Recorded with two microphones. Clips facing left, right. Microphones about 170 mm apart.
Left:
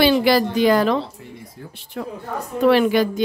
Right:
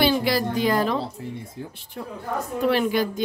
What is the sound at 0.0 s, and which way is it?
Speech, 90° left.